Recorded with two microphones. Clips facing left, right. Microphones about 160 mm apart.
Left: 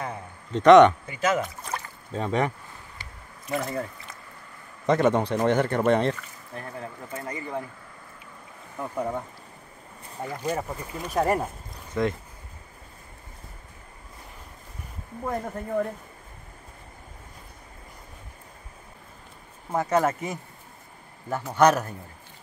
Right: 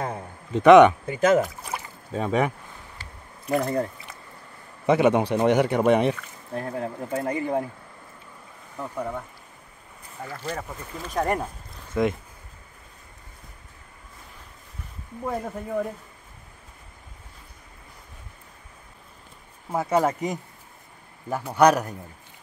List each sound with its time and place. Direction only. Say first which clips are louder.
0.5 s speech: right 1 dB; 10° right (ahead or behind)
1.0 s speech: right 6 dB; 50° right (ahead or behind)
1.4 s rowboat: right 3 dB; 10° right (ahead or behind)
4.8 s speech: right 2 dB; 10° right (ahead or behind)
6.5 s speech: right 7 dB; 60° right (ahead or behind)
8.7 s speech: left 1 dB; 10° left (ahead or behind)
10.2 s speech: left 4 dB; 15° left (ahead or behind)
11.9 s speech: right 2 dB; 15° right (ahead or behind)
15.2 s speech: right 1 dB; 5° right (ahead or behind)
19.7 s speech: right 1 dB; 10° right (ahead or behind)